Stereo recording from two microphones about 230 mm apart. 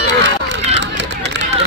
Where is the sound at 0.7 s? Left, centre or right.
Right.